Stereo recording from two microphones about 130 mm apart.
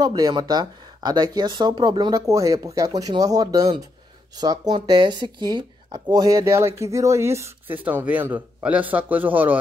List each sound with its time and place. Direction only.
0.0 s speech: 30° right (ahead or behind); by 9.6 s 15° right (ahead or behind)